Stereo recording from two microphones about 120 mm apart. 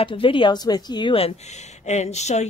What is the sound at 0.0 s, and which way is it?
Speech, 45° left (ahead or behind).